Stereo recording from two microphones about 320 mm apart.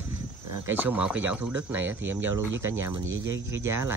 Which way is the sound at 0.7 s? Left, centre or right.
Centre.